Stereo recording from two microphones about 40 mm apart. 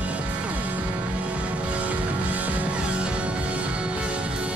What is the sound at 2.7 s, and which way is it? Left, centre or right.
Music, right.